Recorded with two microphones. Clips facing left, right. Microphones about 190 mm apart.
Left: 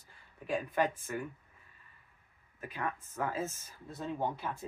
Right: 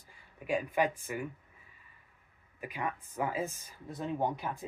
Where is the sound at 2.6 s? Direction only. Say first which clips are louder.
Right 1 dB; 15° right (ahead or behind).